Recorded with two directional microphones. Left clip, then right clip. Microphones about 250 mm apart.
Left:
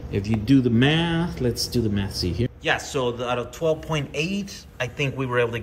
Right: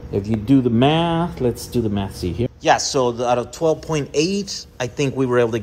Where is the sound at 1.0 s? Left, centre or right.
Left.